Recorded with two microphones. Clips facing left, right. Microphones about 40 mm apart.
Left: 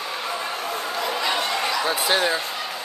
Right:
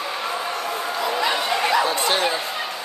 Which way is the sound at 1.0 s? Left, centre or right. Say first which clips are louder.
Right 2 dB; centre.